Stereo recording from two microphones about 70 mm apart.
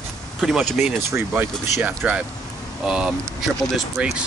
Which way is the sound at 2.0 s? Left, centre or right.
Centre.